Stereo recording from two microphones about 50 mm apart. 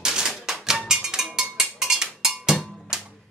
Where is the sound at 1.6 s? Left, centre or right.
Centre.